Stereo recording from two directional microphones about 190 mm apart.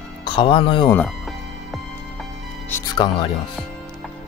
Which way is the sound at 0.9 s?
5° left (ahead or behind).